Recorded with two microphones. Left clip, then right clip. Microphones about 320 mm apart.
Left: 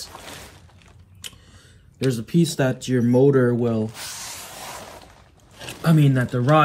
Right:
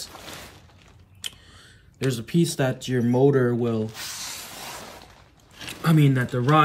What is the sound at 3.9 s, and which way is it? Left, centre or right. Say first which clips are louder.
Spray: even; left.